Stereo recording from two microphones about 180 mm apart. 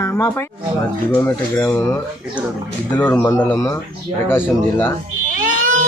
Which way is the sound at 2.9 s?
10° left (ahead or behind).